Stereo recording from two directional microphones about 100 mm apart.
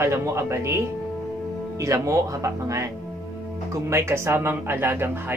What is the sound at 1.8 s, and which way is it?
A man's voice, 30° right (ahead or behind).